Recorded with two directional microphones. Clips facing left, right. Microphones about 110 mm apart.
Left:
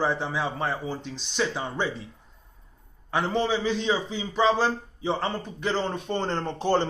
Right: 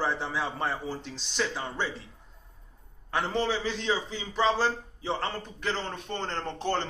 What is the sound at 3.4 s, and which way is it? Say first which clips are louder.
A man's voice: left 4 dB; 10° left (ahead or behind).